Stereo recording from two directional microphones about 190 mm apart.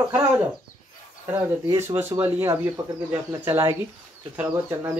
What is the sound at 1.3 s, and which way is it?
Speech, 15° right (ahead or behind).